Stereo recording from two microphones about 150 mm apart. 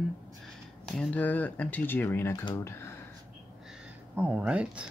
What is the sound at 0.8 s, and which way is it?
Speech, 5° left (ahead or behind).